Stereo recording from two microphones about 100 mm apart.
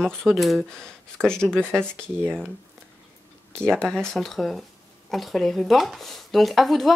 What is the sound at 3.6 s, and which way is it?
Speech, 5° left (ahead or behind).